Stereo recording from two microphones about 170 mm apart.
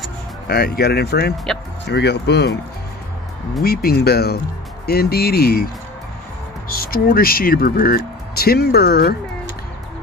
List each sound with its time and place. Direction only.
0.5 s speech: 65° left (ahead or behind)
3.6 s speech: 65° left (ahead or behind)
6.8 s speech: 60° left (ahead or behind)